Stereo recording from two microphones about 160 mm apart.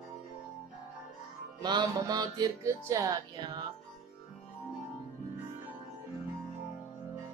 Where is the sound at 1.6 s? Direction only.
25° right (ahead or behind).